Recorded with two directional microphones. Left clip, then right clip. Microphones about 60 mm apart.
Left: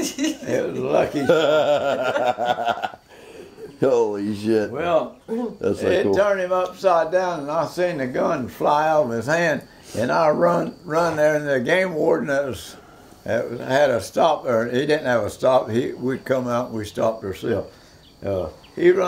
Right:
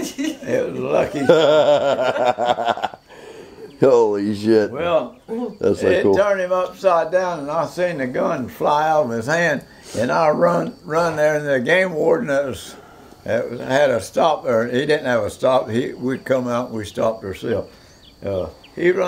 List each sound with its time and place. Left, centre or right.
0.0 s a sound: left
0.8 s speech: centre
1.3 s chuckle: right
2.2 s speech: right
4.7 s speech: centre
5.6 s chuckle: right
5.9 s speech: centre